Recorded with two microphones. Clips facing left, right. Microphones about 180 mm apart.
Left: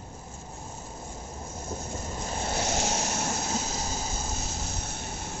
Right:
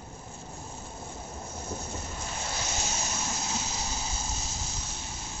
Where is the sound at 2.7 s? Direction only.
80° left; by 5.3 s 55° left (ahead or behind).